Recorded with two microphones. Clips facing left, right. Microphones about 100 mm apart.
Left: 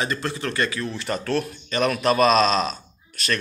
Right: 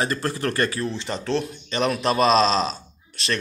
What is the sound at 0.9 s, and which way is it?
A man's voice, 20° right (ahead or behind).